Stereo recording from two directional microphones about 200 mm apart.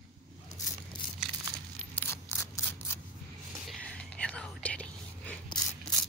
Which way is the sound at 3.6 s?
5° left (ahead or behind).